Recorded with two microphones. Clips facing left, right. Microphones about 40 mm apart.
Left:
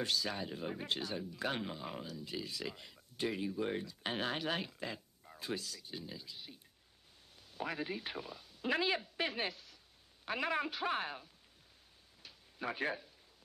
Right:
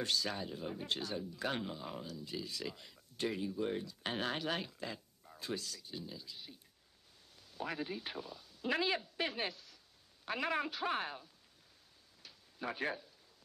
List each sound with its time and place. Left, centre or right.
0.0 s a man's voice: centre
0.5 s speech: left
0.8 s speech: centre
1.6 s speech: centre
3.8 s speech: centre
7.6 s a man's voice: centre
12.2 s a sound: centre